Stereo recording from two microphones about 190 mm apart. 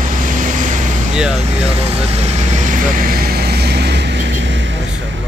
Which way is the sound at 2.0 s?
35° right (ahead or behind).